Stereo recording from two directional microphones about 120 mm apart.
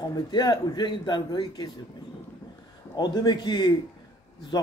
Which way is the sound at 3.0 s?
35° left (ahead or behind).